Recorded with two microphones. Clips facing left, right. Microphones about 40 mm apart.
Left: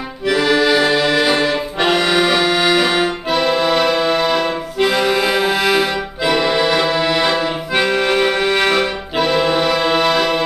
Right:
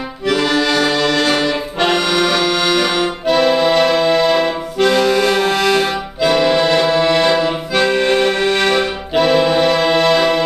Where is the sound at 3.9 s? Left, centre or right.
Centre.